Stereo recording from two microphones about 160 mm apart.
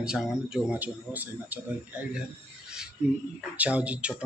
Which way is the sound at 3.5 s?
10° right (ahead or behind).